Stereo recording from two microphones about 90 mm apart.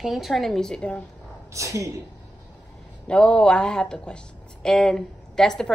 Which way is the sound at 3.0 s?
10° left (ahead or behind).